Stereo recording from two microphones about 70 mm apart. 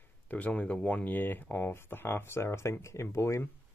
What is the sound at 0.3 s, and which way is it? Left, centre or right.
Speech, centre.